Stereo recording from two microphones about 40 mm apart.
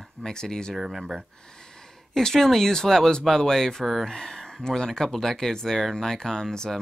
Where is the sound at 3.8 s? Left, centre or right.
Centre.